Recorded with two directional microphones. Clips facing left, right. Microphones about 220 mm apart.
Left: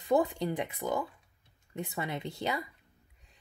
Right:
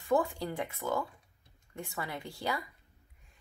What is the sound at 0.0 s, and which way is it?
A woman's voice, 20° left (ahead or behind).